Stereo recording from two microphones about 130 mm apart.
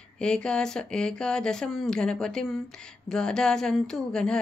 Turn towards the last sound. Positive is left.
turn(degrees=5)  # may be behind; listen again after turning